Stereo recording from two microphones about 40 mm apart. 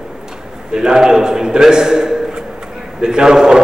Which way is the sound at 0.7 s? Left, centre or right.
Centre.